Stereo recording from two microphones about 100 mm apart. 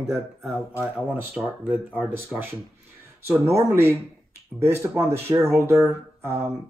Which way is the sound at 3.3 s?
25° right (ahead or behind).